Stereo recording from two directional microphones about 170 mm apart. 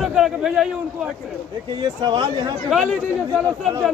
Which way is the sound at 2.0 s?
25° right (ahead or behind).